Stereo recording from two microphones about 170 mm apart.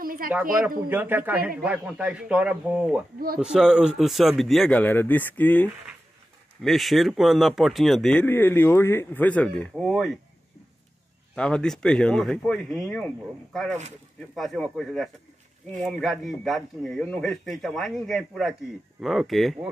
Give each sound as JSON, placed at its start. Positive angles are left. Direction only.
{"t": 0.0, "sound": "a sound", "side_deg": -55}
{"t": 0.3, "sound": "speech", "side_deg": -10}
{"t": 11.3, "sound": "speech", "side_deg": 5}